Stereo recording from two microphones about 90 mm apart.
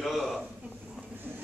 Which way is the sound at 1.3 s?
20° right (ahead or behind).